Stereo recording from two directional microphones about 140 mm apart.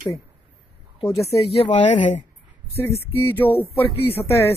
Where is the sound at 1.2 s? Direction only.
45° left (ahead or behind).